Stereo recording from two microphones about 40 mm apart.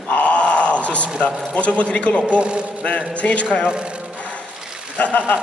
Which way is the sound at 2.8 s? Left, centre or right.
Left.